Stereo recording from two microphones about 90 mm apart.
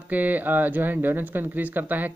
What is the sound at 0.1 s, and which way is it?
Speech, 20° right (ahead or behind).